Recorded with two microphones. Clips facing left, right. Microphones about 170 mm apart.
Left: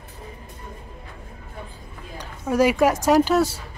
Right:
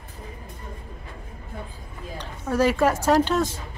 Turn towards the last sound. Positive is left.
turn(degrees=10)  # may be behind; listen again after turning